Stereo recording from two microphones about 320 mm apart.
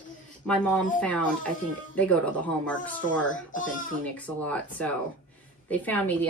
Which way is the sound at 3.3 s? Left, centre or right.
Left.